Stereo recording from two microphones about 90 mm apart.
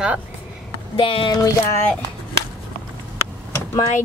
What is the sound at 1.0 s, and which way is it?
Speech, 80° left.